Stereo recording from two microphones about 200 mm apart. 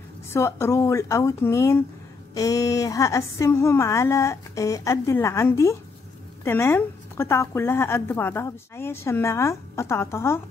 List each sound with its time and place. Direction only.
0.3 s a woman's voice: 15° left (ahead or behind)